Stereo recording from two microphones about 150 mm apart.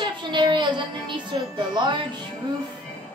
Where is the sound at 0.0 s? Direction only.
30° right (ahead or behind).